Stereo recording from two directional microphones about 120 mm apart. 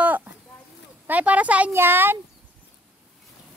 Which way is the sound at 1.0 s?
15° right (ahead or behind).